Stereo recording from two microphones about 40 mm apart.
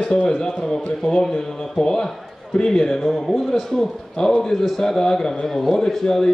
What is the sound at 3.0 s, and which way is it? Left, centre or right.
Speech, centre.